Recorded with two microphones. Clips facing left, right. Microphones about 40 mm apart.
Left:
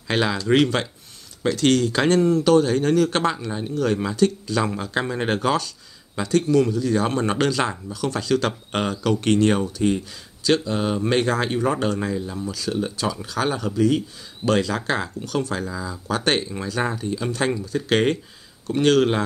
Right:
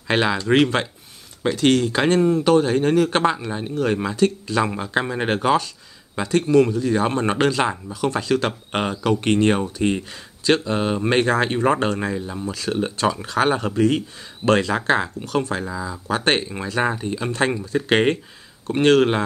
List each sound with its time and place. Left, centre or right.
0.1 s speech: right
14.8 s speech: right